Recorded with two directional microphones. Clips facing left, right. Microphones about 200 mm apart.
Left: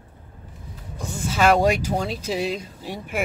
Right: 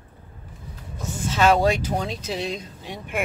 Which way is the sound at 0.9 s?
10° left (ahead or behind).